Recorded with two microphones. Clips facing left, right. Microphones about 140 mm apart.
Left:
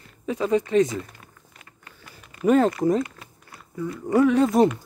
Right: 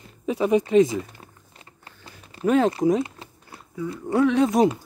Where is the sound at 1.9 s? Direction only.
30° right (ahead or behind).